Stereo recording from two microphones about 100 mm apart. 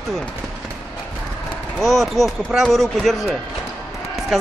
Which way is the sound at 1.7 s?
Centre (ahead or behind).